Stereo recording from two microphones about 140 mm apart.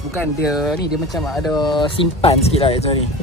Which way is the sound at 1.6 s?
35° left (ahead or behind).